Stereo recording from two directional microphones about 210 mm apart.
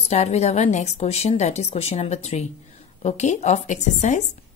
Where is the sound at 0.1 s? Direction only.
30° left (ahead or behind).